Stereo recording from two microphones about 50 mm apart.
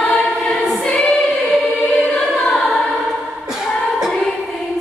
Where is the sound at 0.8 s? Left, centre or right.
Left.